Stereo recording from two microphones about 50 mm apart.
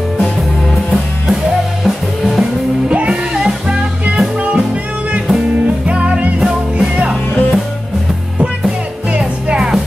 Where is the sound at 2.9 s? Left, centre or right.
Centre.